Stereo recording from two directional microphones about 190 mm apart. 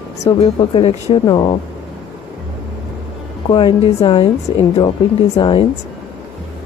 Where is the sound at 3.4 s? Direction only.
30° left (ahead or behind).